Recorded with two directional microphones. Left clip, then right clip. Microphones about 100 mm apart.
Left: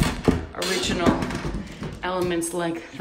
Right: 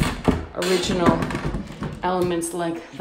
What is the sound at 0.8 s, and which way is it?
Speech, 90° right.